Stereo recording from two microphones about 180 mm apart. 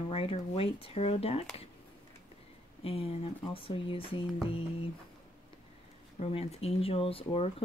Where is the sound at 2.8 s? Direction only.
30° left (ahead or behind).